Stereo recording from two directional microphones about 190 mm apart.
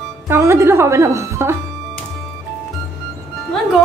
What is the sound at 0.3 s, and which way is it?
Speech, 15° right (ahead or behind).